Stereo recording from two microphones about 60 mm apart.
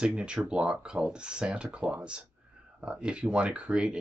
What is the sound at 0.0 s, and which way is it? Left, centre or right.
Speech, centre.